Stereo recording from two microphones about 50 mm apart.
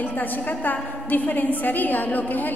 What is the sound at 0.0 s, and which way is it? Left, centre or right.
A woman's voice, left.